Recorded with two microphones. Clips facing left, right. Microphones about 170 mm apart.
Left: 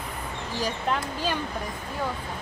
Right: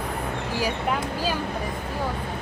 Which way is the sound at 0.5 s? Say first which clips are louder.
Right 1 dB; 10° right (ahead or behind).